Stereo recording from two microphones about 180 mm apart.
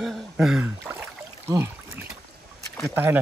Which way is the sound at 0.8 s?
15° right (ahead or behind).